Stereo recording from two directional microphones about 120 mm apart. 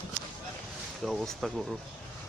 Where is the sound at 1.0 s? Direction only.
Centre (ahead or behind).